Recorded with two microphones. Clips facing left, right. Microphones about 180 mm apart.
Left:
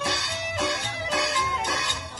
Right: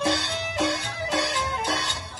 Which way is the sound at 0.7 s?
25° right (ahead or behind).